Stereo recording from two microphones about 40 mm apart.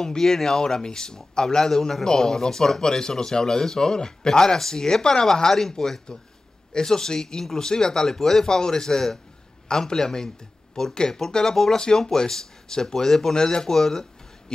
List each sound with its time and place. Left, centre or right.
0.0 s speech: centre